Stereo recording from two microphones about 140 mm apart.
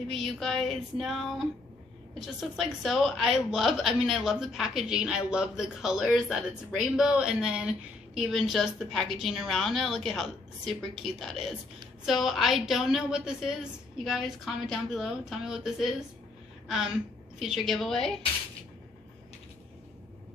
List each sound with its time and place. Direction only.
0.1 s a woman's voice: centre (ahead or behind)